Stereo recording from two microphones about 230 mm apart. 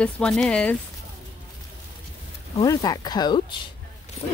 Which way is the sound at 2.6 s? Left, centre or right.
Centre.